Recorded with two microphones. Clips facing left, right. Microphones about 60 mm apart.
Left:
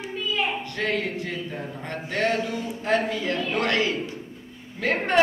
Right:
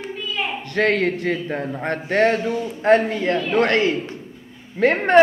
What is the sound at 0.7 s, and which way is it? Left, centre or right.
A man's voice, right.